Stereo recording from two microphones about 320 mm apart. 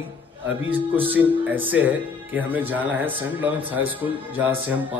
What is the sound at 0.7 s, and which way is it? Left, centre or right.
Speech, centre.